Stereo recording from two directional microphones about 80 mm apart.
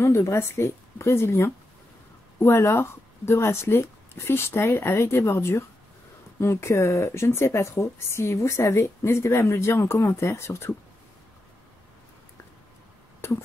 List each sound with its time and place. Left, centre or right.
0.0 s speech: left